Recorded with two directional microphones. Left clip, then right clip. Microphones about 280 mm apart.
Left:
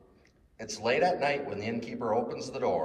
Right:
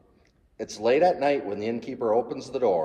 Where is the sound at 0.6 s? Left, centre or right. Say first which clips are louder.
Right 6 dB; right.